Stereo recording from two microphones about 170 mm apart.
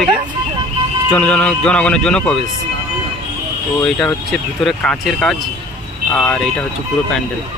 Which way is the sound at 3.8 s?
5° left (ahead or behind).